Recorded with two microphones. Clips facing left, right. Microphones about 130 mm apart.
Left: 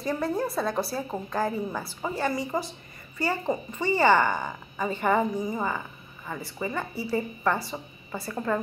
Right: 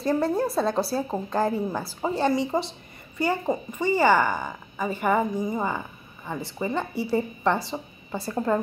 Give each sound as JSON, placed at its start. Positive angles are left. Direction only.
{"t": 0.0, "sound": "a woman's voice", "side_deg": -30}
{"t": 3.2, "sound": "a woman's voice", "side_deg": -15}